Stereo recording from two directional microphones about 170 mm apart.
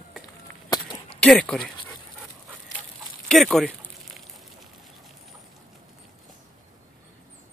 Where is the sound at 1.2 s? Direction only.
5° left (ahead or behind).